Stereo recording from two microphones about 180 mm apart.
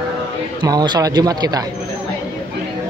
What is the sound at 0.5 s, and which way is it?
Speech, 25° right (ahead or behind).